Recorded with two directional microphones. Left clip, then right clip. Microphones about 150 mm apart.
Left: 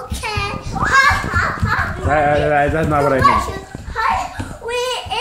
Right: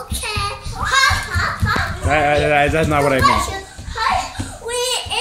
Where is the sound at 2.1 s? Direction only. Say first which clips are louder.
Even; 20° right (ahead or behind).